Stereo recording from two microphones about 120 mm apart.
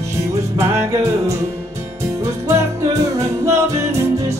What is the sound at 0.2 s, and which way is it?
Music, 25° right (ahead or behind).